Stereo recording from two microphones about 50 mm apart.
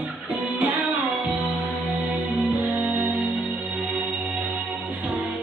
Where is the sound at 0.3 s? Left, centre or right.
Right.